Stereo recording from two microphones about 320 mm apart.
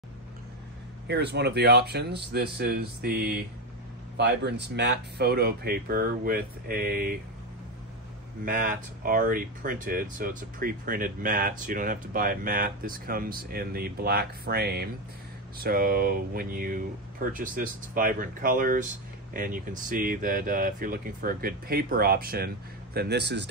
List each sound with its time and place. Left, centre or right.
1.0 s speech: right
8.5 s speech: right